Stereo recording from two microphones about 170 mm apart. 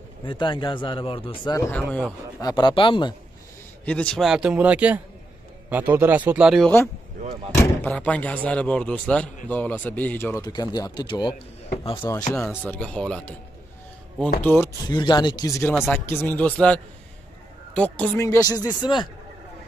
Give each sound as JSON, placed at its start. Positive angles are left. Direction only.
{"t": 0.2, "sound": "speech", "side_deg": 30}
{"t": 1.6, "sound": "speech", "side_deg": 10}
{"t": 2.4, "sound": "speech", "side_deg": 25}
{"t": 3.8, "sound": "a man's voice", "side_deg": 5}
{"t": 7.5, "sound": "slam", "side_deg": 15}
{"t": 7.9, "sound": "speech", "side_deg": 10}
{"t": 12.4, "sound": "speech", "side_deg": 5}
{"t": 14.4, "sound": "speech", "side_deg": 10}
{"t": 14.9, "sound": "speech", "side_deg": 25}
{"t": 15.9, "sound": "speech", "side_deg": 10}
{"t": 18.2, "sound": "speech", "side_deg": 20}